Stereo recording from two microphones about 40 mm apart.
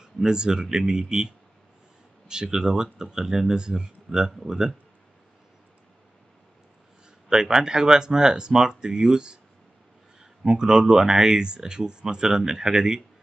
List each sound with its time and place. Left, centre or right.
0.0 s speech: centre
7.2 s speech: centre
10.4 s speech: centre